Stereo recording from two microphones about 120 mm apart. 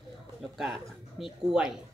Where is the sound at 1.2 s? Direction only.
5° right (ahead or behind).